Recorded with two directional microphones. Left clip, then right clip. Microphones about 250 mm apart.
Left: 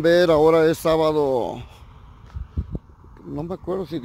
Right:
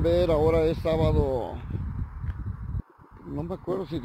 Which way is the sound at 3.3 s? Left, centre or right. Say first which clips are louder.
Left 4 dB; left.